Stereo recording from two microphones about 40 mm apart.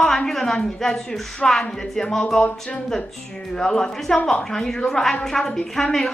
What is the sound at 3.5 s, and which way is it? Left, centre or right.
A woman's voice, centre.